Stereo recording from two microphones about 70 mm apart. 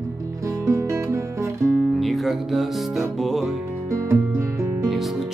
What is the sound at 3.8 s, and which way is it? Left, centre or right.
Music, right.